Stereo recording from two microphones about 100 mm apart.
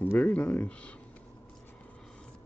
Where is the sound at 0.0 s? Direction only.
15° left (ahead or behind).